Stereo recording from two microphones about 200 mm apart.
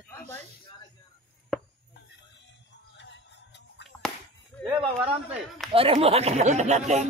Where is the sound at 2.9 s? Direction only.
60° left (ahead or behind).